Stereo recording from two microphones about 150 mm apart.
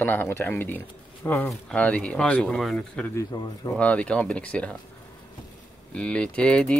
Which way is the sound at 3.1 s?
20° left (ahead or behind).